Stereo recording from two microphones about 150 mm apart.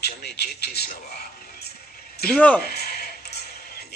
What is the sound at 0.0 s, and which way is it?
Speech, 90° left.